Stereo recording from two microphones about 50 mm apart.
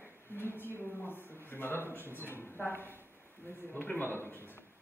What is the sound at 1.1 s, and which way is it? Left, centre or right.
A man's voice, left.